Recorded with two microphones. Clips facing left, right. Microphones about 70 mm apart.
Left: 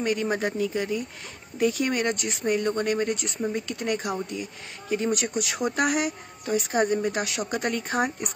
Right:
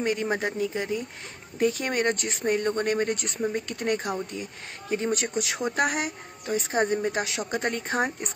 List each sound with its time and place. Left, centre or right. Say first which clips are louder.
0.0 s a woman's voice: left 1 dB; right
1.6 s a woman's voice: left 1 dB; right